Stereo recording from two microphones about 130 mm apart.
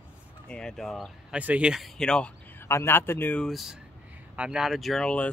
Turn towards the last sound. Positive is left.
turn(degrees=5)  # may be behind; listen again after turning